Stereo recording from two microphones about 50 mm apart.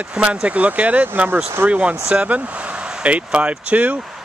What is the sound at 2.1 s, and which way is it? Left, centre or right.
Speech, right.